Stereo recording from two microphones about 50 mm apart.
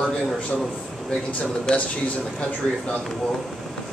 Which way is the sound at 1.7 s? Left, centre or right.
Centre.